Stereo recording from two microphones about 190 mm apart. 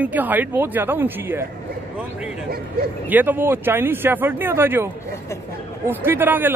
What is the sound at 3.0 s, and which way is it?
Speech, 10° right (ahead or behind).